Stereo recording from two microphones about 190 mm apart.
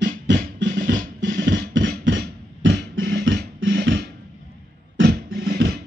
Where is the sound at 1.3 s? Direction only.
75° right (ahead or behind).